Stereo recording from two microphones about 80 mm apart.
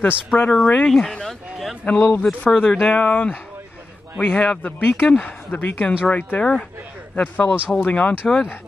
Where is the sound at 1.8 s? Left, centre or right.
Centre.